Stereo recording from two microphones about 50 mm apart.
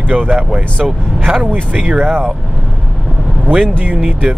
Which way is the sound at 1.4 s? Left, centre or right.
Right.